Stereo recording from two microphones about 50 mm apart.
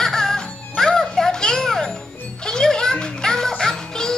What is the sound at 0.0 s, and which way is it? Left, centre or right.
Music, centre.